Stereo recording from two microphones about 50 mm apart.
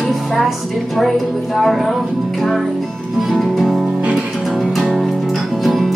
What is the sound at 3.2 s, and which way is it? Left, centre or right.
Music, centre.